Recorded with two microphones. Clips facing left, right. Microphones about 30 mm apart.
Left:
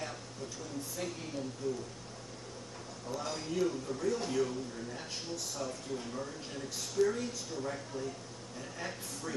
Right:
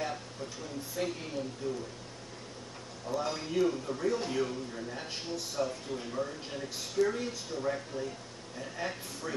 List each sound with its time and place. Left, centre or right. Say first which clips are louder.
0.0 s a sound: right 5 dB; right
1.6 s speech: even; right
3.1 s speech: right 4 dB; centre